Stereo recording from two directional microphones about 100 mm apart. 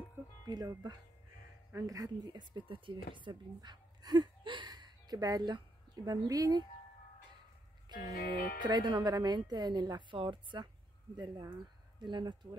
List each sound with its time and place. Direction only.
0.5 s speech: 40° right (ahead or behind)
7.9 s speech: 45° right (ahead or behind)
10.1 s speech: 55° right (ahead or behind)